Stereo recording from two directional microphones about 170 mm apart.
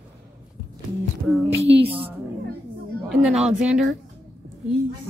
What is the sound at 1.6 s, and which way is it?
Speech, 35° right (ahead or behind).